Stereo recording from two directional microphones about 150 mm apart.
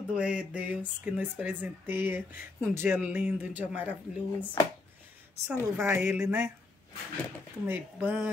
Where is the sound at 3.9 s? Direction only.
10° left (ahead or behind).